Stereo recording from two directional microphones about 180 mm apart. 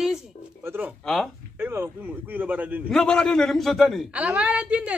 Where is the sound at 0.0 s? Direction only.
5° right (ahead or behind).